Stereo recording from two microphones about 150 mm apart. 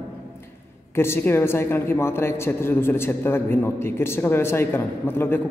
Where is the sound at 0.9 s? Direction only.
15° left (ahead or behind).